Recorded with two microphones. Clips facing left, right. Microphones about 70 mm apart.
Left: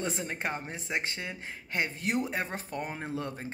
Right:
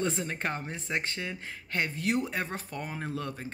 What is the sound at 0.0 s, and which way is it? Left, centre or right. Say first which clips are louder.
Speech: right 2 dB; left.